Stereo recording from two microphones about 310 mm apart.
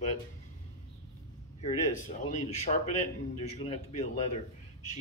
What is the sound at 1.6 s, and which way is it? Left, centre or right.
Speech, left.